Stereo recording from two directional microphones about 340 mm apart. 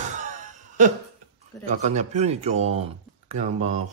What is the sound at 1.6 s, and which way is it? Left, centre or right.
Speech, centre.